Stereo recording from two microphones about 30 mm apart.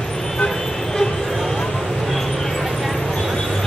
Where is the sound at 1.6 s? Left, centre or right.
Left.